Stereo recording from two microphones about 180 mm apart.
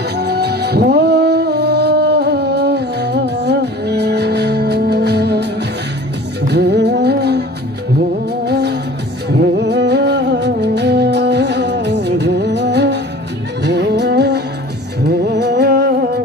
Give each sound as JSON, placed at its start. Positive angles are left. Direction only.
{"t": 0.2, "sound": "music", "side_deg": -65}
{"t": 8.5, "sound": "music", "side_deg": -65}